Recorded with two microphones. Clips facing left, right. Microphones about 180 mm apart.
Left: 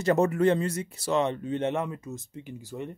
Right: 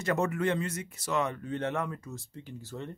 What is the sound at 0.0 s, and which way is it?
Speech, 30° left (ahead or behind).